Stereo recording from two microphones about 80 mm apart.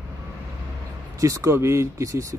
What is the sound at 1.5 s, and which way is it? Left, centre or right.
Speech, right.